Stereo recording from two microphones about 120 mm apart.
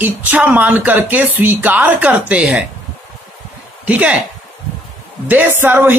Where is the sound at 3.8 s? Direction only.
10° right (ahead or behind).